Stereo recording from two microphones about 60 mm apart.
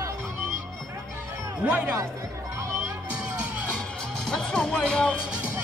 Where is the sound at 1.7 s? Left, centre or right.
Right.